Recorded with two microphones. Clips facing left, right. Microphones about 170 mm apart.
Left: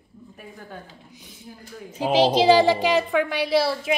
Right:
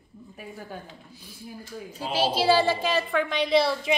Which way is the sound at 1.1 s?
20° left (ahead or behind).